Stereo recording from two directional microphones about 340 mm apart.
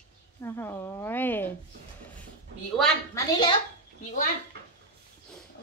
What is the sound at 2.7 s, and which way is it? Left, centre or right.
Speech, centre.